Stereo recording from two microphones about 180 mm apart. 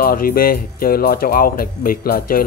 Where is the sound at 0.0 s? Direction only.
55° left (ahead or behind).